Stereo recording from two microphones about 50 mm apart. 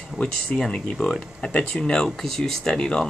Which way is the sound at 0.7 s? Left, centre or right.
Centre.